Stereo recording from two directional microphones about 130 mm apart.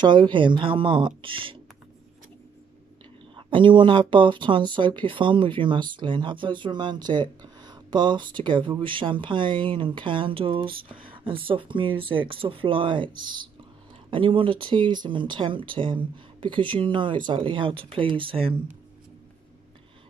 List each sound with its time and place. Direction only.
0.0 s speech: 40° right (ahead or behind)
3.3 s speech: 40° right (ahead or behind)